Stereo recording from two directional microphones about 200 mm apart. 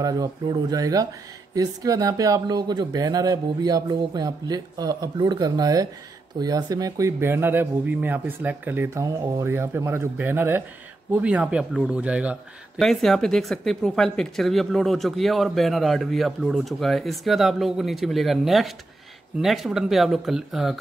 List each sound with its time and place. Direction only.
0.0 s a man's voice: 20° right (ahead or behind); by 20.7 s centre (ahead or behind)